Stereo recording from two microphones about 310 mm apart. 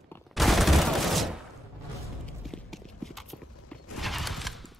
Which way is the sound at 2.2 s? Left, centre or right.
Centre.